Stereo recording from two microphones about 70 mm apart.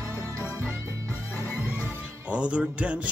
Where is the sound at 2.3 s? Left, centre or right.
Centre.